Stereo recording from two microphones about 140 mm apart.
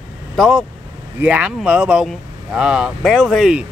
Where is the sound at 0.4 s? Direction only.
Centre (ahead or behind).